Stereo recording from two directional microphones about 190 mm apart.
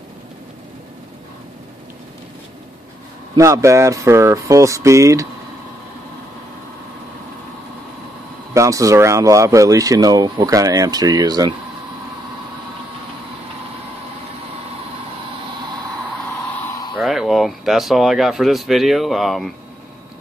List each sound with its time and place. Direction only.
3.3 s speech: 15° right (ahead or behind)
8.5 s speech: 15° right (ahead or behind)
16.9 s speech: centre (ahead or behind)